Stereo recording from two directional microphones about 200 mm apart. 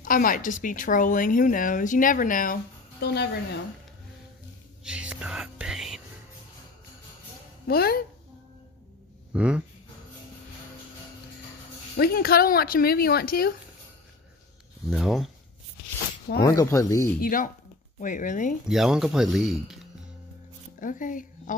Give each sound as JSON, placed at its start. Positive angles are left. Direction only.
{"t": 0.0, "sound": "speech", "side_deg": 45}
{"t": 4.8, "sound": "whispering", "side_deg": -5}
{"t": 7.6, "sound": "speech", "side_deg": 50}
{"t": 9.3, "sound": "speech", "side_deg": -5}
{"t": 12.0, "sound": "speech", "side_deg": 50}
{"t": 14.9, "sound": "speech", "side_deg": 0}
{"t": 16.3, "sound": "speech", "side_deg": 15}
{"t": 17.2, "sound": "speech", "side_deg": 45}
{"t": 18.7, "sound": "speech", "side_deg": 0}
{"t": 20.8, "sound": "speech", "side_deg": 40}